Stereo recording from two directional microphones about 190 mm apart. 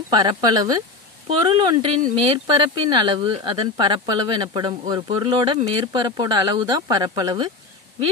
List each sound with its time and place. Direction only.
0.1 s speech: 20° right (ahead or behind)